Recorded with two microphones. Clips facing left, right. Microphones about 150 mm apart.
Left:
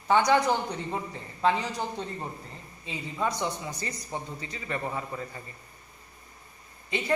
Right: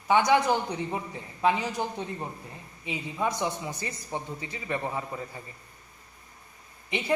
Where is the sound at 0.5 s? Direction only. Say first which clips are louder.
Right 1 dB; 15° right (ahead or behind).